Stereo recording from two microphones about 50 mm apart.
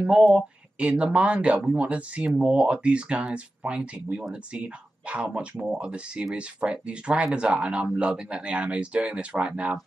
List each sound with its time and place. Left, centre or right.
0.3 s speech: right